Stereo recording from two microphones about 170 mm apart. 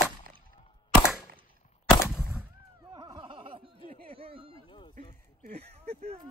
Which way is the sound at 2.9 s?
25° right (ahead or behind).